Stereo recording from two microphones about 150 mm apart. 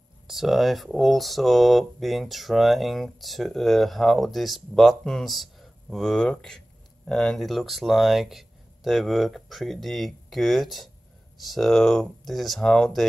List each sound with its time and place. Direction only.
0.3 s speech: centre (ahead or behind)